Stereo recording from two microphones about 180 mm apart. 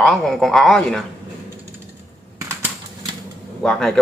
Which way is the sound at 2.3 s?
20° right (ahead or behind).